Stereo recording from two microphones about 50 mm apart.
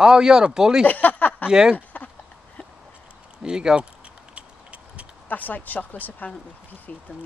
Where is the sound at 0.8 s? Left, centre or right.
Left.